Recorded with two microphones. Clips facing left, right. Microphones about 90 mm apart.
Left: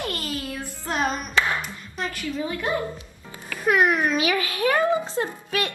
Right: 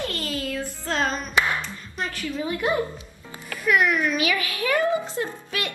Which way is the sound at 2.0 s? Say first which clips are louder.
Even; centre (ahead or behind).